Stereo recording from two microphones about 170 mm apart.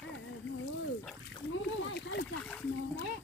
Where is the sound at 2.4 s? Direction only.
5° left (ahead or behind).